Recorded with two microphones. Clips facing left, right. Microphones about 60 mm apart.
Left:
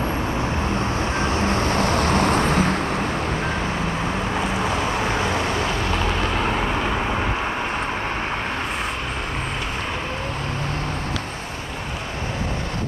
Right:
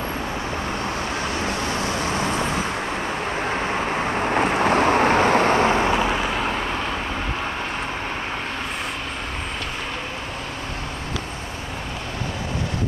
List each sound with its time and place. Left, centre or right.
1.7 s vehicle: left
4.4 s vehicle: right
5.9 s vehicle: centre